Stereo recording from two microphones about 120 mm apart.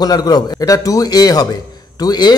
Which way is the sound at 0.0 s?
35° left (ahead or behind).